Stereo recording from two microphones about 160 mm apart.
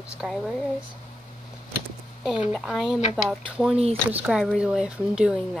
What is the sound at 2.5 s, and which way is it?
Speech, centre (ahead or behind).